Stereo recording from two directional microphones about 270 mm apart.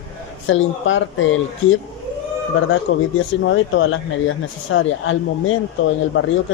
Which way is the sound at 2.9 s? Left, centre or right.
Left.